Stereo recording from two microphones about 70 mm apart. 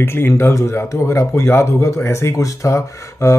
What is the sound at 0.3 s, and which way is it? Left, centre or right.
Speech, left.